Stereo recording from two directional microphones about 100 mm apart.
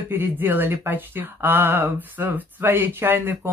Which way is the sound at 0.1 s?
20° right (ahead or behind).